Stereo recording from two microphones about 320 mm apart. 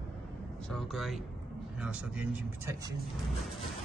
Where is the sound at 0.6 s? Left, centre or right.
Centre.